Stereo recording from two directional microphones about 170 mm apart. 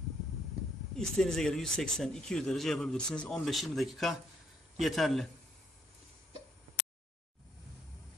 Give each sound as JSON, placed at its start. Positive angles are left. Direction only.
{"t": 0.9, "sound": "speech", "side_deg": 5}